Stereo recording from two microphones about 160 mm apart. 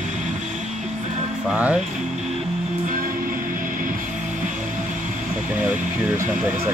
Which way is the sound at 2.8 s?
60° right (ahead or behind).